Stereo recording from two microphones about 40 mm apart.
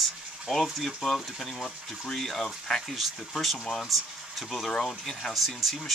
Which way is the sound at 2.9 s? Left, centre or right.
Centre.